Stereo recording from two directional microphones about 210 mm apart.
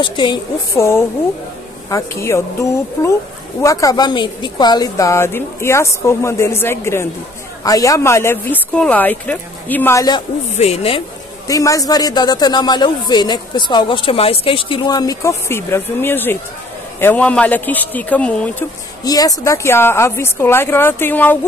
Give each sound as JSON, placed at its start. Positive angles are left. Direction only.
{"t": 0.0, "sound": "a man's voice", "side_deg": 20}
{"t": 10.5, "sound": "a man's voice", "side_deg": 30}
{"t": 11.4, "sound": "a man's voice", "side_deg": 15}